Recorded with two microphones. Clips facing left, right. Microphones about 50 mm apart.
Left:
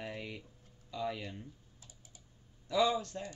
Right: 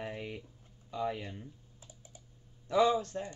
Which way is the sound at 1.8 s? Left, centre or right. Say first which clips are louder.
Right 4 dB; right.